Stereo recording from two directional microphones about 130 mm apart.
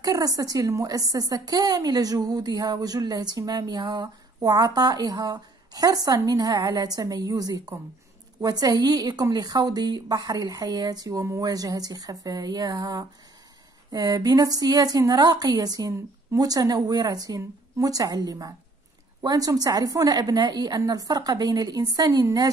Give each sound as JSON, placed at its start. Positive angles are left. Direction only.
{"t": 0.0, "sound": "a woman's voice", "side_deg": -25}